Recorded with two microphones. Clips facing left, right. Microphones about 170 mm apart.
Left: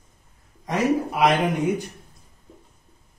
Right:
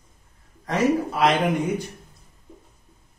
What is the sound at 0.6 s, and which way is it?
Speech, 15° left (ahead or behind).